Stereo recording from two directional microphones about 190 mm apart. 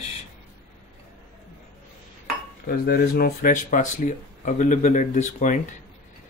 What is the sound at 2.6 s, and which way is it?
Speech, 50° left (ahead or behind).